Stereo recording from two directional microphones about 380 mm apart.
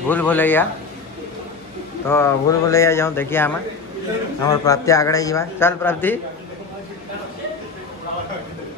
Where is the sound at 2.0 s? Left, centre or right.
Centre.